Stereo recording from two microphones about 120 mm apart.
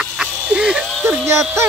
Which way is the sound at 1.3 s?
20° right (ahead or behind).